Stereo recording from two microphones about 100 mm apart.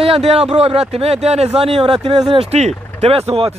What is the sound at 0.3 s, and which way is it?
Speech, 90° right.